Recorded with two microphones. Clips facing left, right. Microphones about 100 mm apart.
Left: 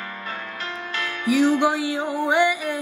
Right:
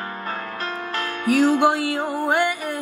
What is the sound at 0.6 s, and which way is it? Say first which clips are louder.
Music: right 2 dB; 45° right (ahead or behind).